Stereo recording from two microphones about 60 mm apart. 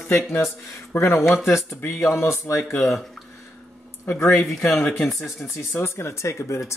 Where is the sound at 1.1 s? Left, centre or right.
Left.